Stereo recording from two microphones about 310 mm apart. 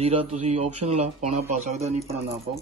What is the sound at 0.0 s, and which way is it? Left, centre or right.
Speech, centre.